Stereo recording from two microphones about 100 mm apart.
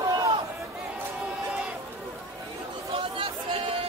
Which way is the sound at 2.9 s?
65° right (ahead or behind).